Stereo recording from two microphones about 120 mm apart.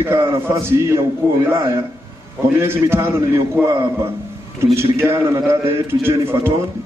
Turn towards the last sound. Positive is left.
turn(degrees=-25)  # may be behind; listen again after turning